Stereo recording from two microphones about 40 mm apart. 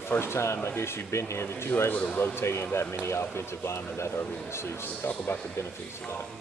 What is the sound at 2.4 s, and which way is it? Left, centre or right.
Speech, left.